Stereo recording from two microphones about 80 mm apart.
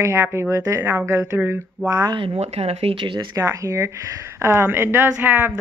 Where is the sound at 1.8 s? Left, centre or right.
Right.